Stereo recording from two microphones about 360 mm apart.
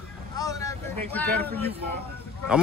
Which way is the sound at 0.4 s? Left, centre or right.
Centre.